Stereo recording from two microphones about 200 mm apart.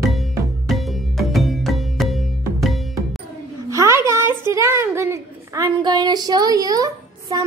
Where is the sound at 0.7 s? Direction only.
Centre (ahead or behind).